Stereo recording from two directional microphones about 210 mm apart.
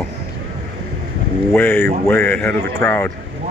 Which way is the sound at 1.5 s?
10° left (ahead or behind).